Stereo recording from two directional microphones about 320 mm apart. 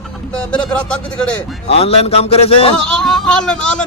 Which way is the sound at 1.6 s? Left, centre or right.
Centre.